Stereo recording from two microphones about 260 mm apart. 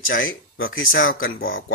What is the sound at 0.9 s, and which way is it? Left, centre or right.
Speech, left.